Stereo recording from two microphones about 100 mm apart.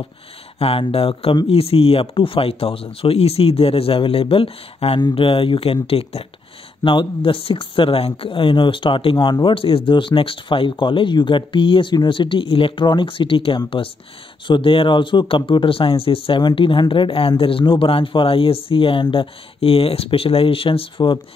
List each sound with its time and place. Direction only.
0.6 s speech: 70° left (ahead or behind)
6.8 s speech: 55° left (ahead or behind)
16.3 s speech: 50° left (ahead or behind); by 20.8 s 65° left (ahead or behind)